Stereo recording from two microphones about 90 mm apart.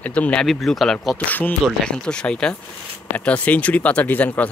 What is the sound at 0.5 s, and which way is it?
Speech, centre (ahead or behind).